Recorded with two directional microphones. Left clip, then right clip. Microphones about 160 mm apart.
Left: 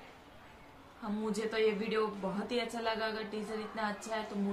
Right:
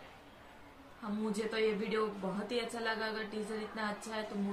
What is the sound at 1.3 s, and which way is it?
Speech, 20° left (ahead or behind).